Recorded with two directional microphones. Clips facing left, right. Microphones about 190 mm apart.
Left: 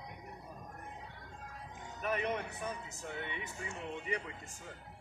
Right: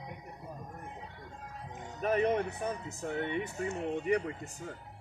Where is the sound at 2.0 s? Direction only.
35° right (ahead or behind).